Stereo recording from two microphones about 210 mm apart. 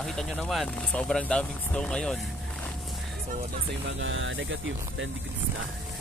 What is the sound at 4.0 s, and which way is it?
Speech, 65° right (ahead or behind).